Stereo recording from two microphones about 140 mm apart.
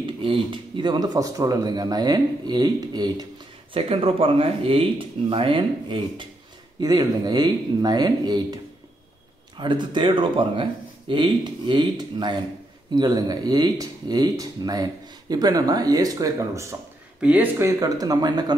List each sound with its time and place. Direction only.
0.0 s speech: 35° right (ahead or behind)
3.7 s speech: 40° right (ahead or behind)
9.6 s speech: 35° right (ahead or behind)
17.2 s speech: 10° right (ahead or behind); by 18.6 s 30° right (ahead or behind)